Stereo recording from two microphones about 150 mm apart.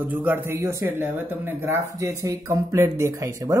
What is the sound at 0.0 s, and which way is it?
Speech, 10° right (ahead or behind).